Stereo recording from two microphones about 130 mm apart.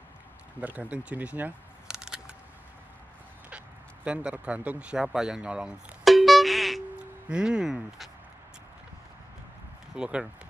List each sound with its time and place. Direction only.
0.6 s speech: 10° right (ahead or behind)
3.4 s a sound: 10° right (ahead or behind)
7.2 s speech: 5° right (ahead or behind)
9.9 s speech: 5° right (ahead or behind)